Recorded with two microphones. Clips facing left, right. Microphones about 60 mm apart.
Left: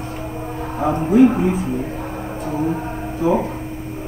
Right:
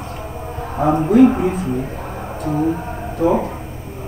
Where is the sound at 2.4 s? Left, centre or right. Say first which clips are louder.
Right 3 dB; centre.